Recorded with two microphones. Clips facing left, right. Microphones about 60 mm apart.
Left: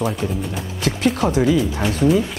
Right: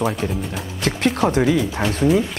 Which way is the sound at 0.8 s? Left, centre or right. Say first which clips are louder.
Even; right.